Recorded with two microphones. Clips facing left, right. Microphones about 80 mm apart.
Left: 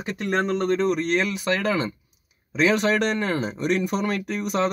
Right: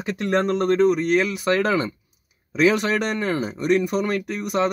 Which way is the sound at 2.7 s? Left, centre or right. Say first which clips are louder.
Left 1 dB; centre.